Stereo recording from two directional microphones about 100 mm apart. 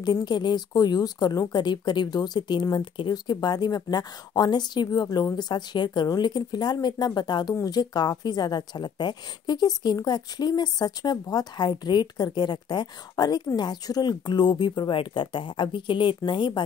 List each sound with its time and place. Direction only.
0.0 s speech: 45° left (ahead or behind)